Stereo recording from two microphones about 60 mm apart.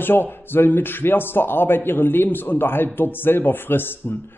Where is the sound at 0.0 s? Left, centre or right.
Left.